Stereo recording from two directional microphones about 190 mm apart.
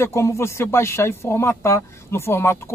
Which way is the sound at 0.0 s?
15° left (ahead or behind).